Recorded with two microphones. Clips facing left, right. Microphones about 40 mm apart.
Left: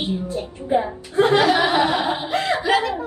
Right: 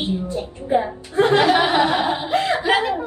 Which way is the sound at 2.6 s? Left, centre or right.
Right.